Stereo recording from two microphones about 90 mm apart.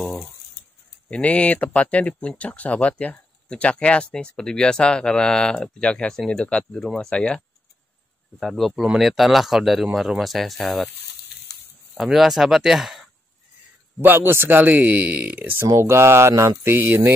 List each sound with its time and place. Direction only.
0.0 s a sound: centre (ahead or behind)
1.1 s speech: 15° left (ahead or behind)
12.0 s speech: centre (ahead or behind)
14.0 s speech: 25° right (ahead or behind)
15.6 s speech: 30° right (ahead or behind)